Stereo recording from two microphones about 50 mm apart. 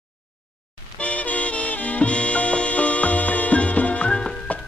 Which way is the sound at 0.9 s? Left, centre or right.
Left.